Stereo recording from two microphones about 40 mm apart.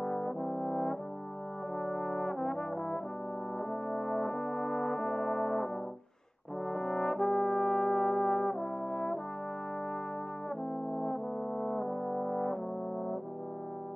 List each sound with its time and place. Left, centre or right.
0.0 s brass instrument: centre
10.9 s brass instrument: centre